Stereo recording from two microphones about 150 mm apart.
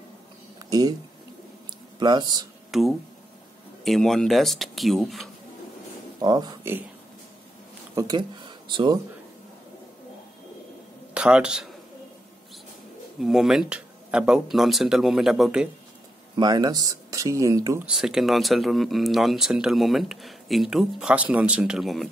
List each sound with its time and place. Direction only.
0.6 s a sound: 25° right (ahead or behind)
2.0 s speech: 30° right (ahead or behind)
2.7 s speech: centre (ahead or behind)
6.2 s speech: 30° right (ahead or behind)
7.9 s speech: 25° right (ahead or behind)
11.1 s a man's voice: 5° right (ahead or behind)
13.2 s speech: centre (ahead or behind)
16.3 s speech: 25° right (ahead or behind)
17.8 s speech: 5° right (ahead or behind)